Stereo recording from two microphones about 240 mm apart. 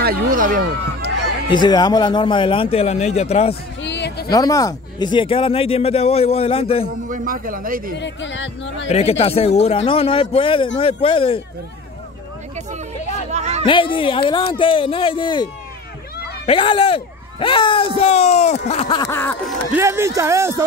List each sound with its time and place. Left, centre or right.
0.0 s speech: right
1.5 s speech: centre
3.8 s music: left
4.3 s speech: centre
7.1 s speech: right
8.0 s speech: left
8.8 s speech: left
13.3 s a sound: right
13.7 s speech: left
19.7 s speech: centre